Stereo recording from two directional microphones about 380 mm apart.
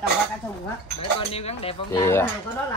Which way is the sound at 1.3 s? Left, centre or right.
Centre.